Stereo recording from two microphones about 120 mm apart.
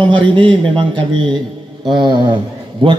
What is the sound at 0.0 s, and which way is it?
A man's voice, 45° right (ahead or behind).